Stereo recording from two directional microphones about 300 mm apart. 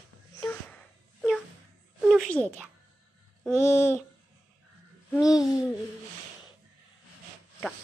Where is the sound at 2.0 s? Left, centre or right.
Centre.